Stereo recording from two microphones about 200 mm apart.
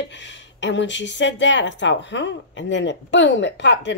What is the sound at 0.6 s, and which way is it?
Speech, 65° left (ahead or behind).